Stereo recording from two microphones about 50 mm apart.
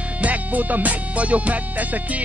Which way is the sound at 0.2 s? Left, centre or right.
Right.